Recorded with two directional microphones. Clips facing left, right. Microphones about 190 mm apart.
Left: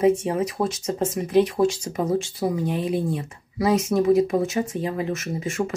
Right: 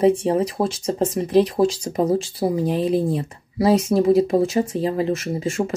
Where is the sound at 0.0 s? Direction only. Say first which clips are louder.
Right 3 dB; 30° right (ahead or behind).